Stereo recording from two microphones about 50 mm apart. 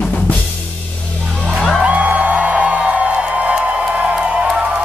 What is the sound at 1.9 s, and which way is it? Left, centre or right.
Music, right.